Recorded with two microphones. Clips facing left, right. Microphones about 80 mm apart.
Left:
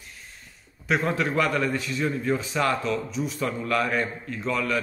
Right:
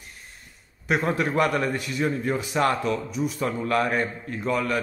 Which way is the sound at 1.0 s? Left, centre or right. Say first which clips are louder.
Right 3 dB; right.